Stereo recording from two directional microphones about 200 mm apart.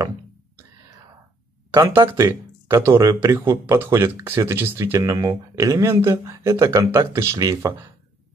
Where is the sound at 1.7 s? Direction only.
15° right (ahead or behind).